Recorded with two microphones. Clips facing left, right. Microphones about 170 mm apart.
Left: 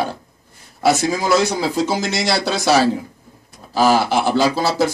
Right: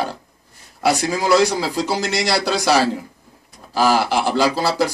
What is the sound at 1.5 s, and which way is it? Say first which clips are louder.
Speech: left 2 dB; 20° left (ahead or behind).